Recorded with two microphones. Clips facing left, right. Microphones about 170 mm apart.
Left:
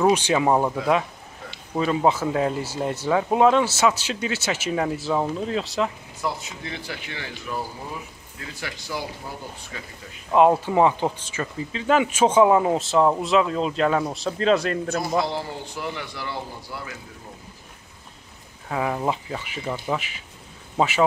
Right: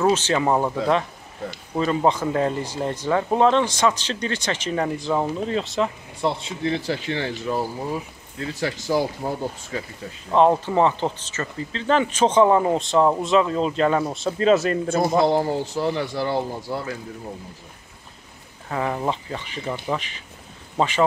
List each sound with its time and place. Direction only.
0.0 s speech: 15° left (ahead or behind)
1.8 s speech: 5° left (ahead or behind)
6.2 s speech: 30° right (ahead or behind)
10.3 s speech: 10° left (ahead or behind)
15.2 s speech: 50° right (ahead or behind)
15.8 s speech: 35° right (ahead or behind)
18.7 s speech: 5° left (ahead or behind)